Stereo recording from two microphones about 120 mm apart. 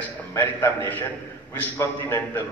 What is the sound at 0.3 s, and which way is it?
A man's voice, 20° left (ahead or behind).